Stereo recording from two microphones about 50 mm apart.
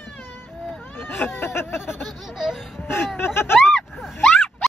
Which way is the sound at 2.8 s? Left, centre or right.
Left.